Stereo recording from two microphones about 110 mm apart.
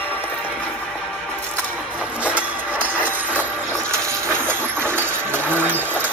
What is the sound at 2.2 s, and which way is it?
Music, 15° right (ahead or behind).